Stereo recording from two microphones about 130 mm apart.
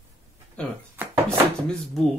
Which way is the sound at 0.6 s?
10° left (ahead or behind).